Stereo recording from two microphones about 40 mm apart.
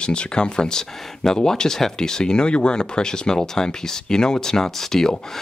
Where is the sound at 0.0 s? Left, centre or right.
Left.